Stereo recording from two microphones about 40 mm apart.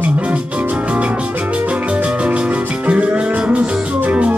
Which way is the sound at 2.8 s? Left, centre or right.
Right.